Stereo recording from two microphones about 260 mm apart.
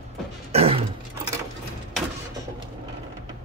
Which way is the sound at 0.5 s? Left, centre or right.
Right.